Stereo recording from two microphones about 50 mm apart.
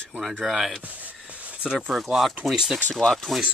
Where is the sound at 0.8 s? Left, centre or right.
Right.